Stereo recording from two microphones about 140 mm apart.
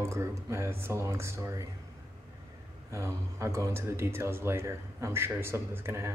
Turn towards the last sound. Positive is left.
turn(degrees=-20)  # may be behind; listen again after turning